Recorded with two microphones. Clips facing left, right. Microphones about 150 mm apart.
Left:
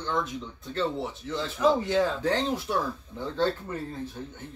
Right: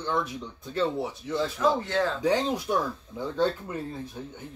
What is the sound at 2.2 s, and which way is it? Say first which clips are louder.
Speech: right 2 dB; 15° right (ahead or behind).